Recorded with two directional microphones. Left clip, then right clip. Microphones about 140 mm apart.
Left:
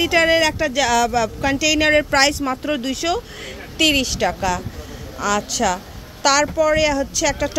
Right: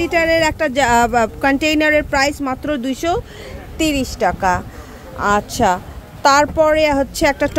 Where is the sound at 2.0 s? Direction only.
20° right (ahead or behind).